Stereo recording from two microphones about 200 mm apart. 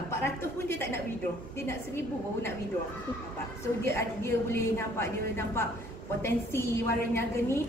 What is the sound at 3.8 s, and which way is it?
A woman's voice, 15° left (ahead or behind).